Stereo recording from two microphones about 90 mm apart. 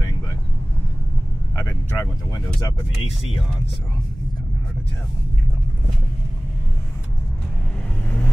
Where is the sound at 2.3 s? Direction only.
60° left (ahead or behind).